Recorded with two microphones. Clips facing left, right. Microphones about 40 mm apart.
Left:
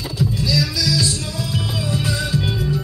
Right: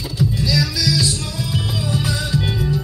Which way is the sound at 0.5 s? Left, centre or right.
Centre.